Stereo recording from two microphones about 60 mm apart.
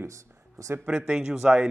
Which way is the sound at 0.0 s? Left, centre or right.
Right.